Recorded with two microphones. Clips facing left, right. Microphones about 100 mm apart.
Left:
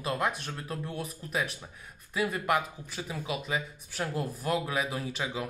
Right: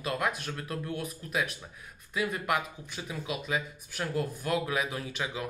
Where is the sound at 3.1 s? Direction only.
30° left (ahead or behind).